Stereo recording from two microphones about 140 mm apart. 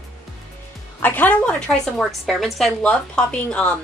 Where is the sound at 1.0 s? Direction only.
10° left (ahead or behind).